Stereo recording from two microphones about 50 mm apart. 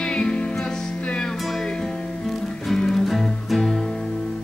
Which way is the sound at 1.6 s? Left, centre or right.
Centre.